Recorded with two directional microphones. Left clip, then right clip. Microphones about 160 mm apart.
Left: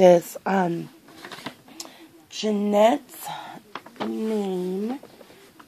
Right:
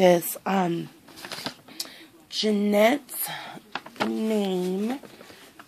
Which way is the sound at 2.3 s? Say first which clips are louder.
Left 1 dB; centre (ahead or behind).